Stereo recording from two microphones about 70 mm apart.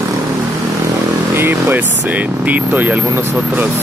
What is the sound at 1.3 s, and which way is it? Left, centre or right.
Speech, right.